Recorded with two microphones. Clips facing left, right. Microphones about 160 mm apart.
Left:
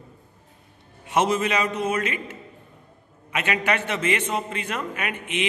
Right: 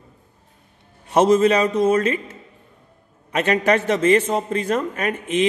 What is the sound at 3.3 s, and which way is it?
A man's voice, 35° right (ahead or behind).